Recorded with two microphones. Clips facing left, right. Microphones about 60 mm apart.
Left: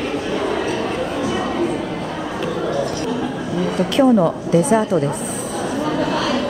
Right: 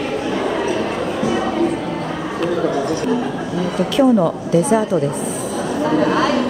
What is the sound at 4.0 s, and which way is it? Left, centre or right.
A woman's voice, centre.